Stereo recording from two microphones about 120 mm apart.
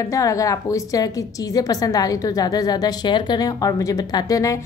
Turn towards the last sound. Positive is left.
turn(degrees=30)  # may be behind; listen again after turning